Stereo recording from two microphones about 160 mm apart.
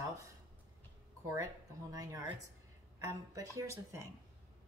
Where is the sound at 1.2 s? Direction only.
20° right (ahead or behind).